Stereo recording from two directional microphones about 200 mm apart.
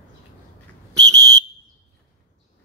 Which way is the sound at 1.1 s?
20° right (ahead or behind).